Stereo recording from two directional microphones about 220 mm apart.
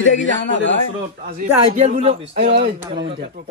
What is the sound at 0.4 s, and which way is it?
Speech, 55° left (ahead or behind).